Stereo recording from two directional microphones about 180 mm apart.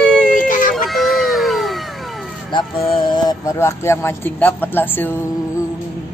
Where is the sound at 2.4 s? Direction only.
25° left (ahead or behind); by 5.1 s 10° left (ahead or behind).